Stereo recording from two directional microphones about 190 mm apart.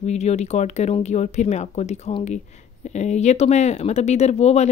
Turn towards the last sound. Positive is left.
turn(degrees=35)  # may be behind; listen again after turning